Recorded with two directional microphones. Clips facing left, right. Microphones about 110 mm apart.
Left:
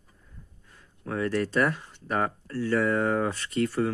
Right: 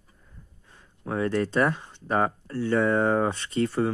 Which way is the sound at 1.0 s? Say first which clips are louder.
Right 2 dB; 25° right (ahead or behind).